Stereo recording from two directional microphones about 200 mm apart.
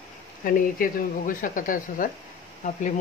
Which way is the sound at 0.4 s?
45° left (ahead or behind).